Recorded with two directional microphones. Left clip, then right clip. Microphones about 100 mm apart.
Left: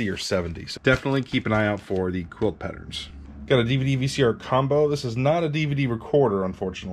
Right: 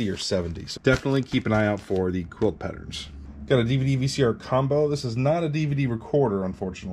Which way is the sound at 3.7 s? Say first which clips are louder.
Left 1 dB; 90° left.